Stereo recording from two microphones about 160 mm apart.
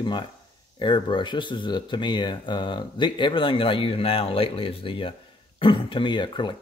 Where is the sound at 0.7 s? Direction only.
30° left (ahead or behind).